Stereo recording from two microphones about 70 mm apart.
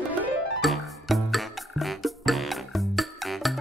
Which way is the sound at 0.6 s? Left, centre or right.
Centre.